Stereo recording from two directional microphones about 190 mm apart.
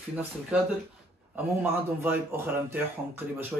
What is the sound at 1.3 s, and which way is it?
A man's voice, 10° right (ahead or behind).